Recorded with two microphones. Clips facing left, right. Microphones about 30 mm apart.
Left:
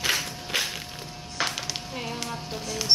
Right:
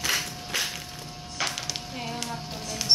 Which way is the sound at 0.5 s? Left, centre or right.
Left.